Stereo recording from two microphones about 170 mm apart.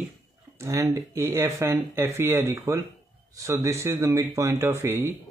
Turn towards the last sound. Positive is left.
turn(degrees=-15)  # may be behind; listen again after turning